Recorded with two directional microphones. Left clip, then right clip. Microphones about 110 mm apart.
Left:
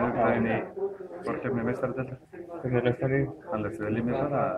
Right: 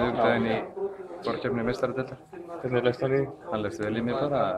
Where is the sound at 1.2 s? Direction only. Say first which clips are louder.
Right 2 dB; 25° right (ahead or behind).